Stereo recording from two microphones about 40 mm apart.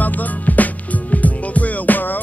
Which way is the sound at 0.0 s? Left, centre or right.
Left.